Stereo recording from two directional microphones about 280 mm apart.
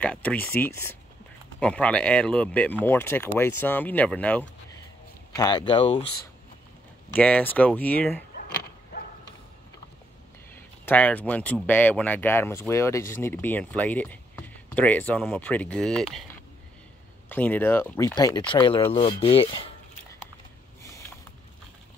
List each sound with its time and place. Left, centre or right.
0.0 s speech: centre
7.2 s speech: centre
10.9 s speech: centre